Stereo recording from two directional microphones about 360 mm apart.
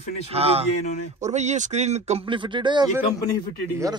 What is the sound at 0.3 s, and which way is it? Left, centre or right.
Speech, centre.